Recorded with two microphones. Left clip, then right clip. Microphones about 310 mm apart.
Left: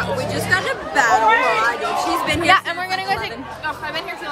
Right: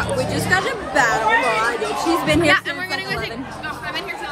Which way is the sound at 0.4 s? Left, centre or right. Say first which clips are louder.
Left 1 dB; centre.